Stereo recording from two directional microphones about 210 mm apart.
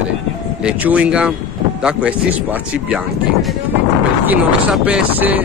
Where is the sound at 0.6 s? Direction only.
5° right (ahead or behind).